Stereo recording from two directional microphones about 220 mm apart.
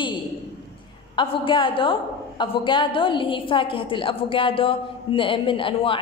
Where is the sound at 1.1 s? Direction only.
25° left (ahead or behind).